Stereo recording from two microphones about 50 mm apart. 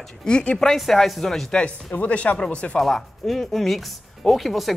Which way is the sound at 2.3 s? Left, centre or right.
Centre.